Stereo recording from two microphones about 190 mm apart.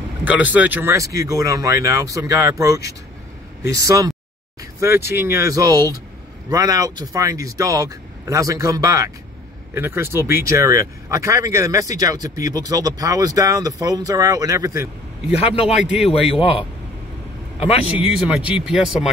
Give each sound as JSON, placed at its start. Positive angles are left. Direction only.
{"t": 0.2, "sound": "speech", "side_deg": -10}
{"t": 15.3, "sound": "a man's voice", "side_deg": 30}
{"t": 15.6, "sound": "speech", "side_deg": -5}
{"t": 16.3, "sound": "a man's voice", "side_deg": 30}
{"t": 18.0, "sound": "speech", "side_deg": -5}